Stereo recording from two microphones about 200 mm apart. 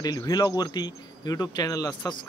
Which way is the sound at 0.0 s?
20° left (ahead or behind).